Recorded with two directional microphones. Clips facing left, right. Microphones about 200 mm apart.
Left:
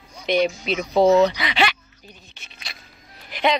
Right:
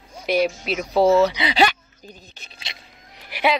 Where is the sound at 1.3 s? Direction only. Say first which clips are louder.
Right 3 dB; 30° right (ahead or behind).